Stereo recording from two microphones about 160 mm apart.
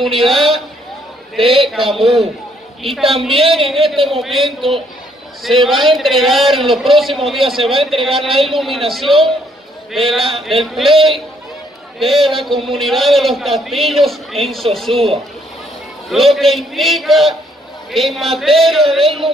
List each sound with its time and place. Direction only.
0.0 s a man's voice: centre (ahead or behind)
1.6 s a man's voice: centre (ahead or behind)